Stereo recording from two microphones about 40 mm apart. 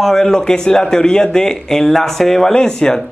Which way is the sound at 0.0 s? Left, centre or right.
Centre.